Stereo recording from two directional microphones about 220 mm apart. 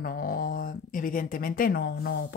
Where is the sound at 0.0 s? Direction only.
40° left (ahead or behind).